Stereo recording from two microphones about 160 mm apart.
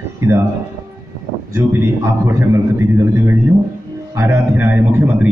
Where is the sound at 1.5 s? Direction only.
15° right (ahead or behind).